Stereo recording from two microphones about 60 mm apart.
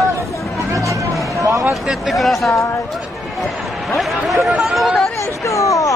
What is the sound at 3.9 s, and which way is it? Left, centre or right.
Chatter, centre.